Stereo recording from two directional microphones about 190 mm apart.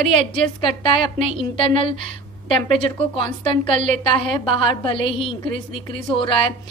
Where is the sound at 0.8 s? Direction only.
25° left (ahead or behind).